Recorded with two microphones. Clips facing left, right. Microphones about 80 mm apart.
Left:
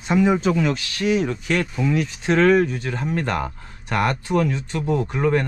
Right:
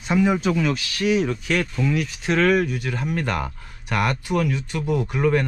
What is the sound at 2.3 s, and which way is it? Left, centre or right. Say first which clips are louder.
Speech: left 3 dB; left.